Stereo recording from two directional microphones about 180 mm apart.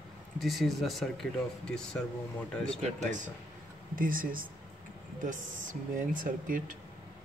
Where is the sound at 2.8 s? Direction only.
40° right (ahead or behind).